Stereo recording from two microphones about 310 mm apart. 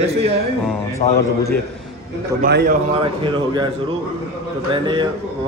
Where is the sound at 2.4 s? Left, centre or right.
Right; by 3.7 s centre.